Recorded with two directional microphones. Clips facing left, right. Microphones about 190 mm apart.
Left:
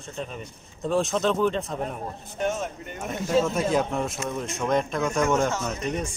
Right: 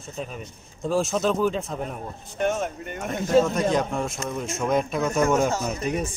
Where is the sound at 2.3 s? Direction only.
60° right (ahead or behind).